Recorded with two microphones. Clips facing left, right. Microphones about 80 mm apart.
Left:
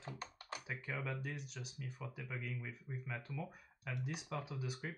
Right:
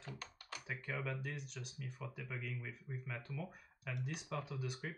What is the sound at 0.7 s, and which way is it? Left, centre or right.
Speech, centre.